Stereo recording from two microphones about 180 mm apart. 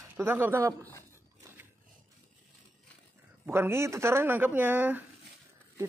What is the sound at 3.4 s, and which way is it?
Speech, 15° right (ahead or behind).